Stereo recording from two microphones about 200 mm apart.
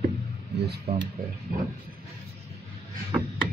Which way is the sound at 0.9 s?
50° right (ahead or behind).